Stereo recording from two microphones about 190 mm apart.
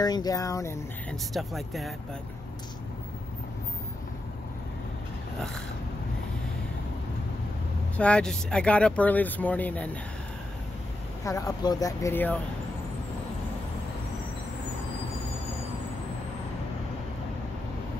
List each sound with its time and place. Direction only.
0.0 s speech: 20° left (ahead or behind)
1.3 s speech: centre (ahead or behind)
8.0 s speech: 5° left (ahead or behind)
11.2 s speech: 15° left (ahead or behind)